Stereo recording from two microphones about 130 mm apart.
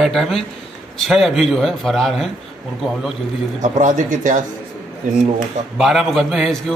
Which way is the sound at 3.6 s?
85° right.